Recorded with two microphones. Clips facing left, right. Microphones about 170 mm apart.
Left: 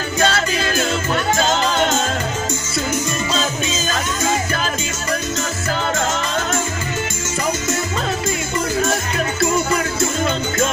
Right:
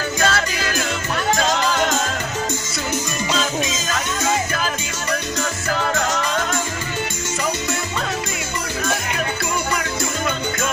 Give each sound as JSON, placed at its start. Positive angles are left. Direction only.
{"t": 0.2, "sound": "music", "side_deg": 30}
{"t": 3.7, "sound": "music", "side_deg": 35}